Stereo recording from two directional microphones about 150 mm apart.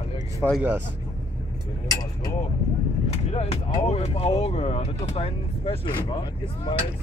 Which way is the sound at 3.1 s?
45° left (ahead or behind).